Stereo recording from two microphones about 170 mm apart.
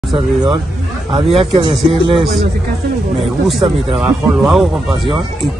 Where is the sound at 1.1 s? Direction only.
35° right (ahead or behind).